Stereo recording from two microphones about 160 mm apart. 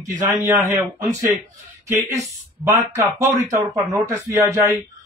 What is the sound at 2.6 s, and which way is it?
A man's voice, 20° right (ahead or behind).